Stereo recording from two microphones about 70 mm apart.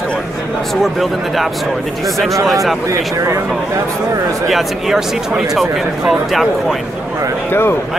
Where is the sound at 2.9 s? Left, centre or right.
Right.